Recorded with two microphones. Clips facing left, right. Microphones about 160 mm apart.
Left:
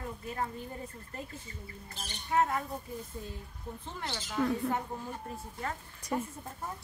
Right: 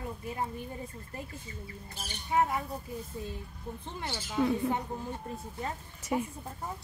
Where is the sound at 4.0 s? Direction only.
10° right (ahead or behind).